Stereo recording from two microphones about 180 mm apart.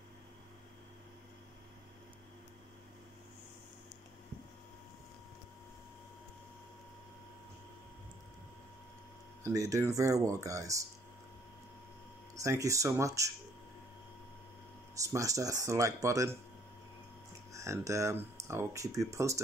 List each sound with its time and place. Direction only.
9.4 s speech: 20° right (ahead or behind)
12.4 s speech: 15° right (ahead or behind)
15.0 s speech: 15° right (ahead or behind)
17.5 s speech: 15° right (ahead or behind)